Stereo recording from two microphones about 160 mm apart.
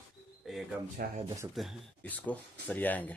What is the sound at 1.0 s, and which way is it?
Speech, 70° right (ahead or behind).